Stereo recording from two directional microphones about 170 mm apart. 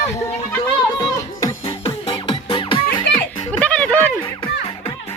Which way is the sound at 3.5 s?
5° left (ahead or behind).